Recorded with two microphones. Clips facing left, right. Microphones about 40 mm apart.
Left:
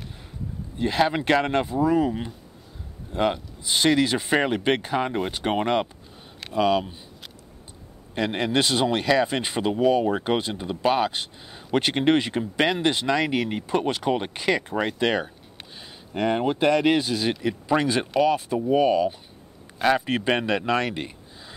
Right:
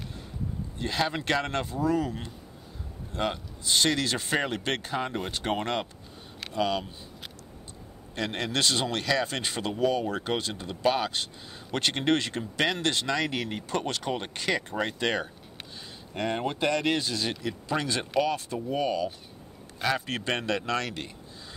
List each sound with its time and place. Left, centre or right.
0.7 s speech: centre
8.1 s a man's voice: centre